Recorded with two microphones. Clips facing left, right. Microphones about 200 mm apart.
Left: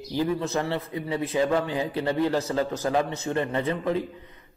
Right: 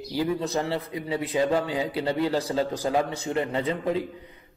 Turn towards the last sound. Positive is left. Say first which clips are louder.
# even
turn(degrees=-15)  # may be behind; listen again after turning